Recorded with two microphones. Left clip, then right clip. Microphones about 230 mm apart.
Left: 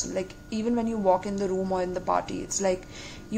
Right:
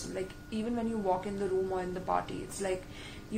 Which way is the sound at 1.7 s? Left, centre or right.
Left.